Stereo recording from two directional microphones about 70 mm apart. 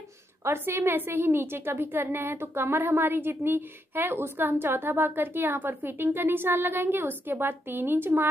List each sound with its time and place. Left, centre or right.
0.4 s a woman's voice: right